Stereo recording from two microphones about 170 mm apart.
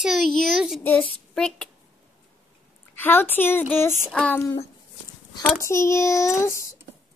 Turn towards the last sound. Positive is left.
turn(degrees=15)  # may be behind; listen again after turning